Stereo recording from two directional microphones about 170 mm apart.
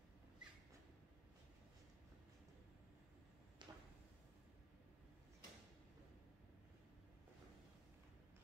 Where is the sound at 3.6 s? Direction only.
25° right (ahead or behind).